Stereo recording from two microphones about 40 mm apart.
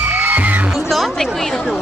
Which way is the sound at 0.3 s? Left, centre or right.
Right.